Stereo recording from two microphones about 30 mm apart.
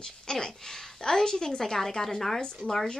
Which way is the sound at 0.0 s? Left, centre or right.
Left.